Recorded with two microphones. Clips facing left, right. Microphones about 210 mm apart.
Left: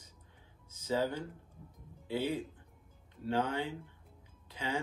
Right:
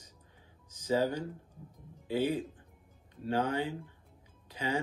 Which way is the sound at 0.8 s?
10° right (ahead or behind).